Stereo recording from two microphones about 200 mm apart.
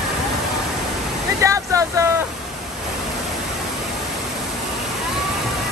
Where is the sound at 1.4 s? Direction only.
15° right (ahead or behind).